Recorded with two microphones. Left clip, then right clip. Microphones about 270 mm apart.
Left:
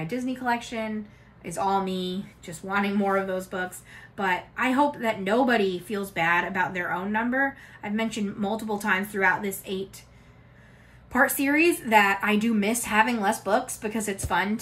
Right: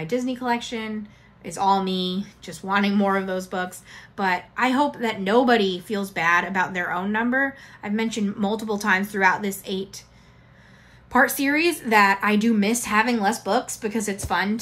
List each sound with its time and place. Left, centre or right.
0.0 s a woman's voice: centre
11.1 s a woman's voice: centre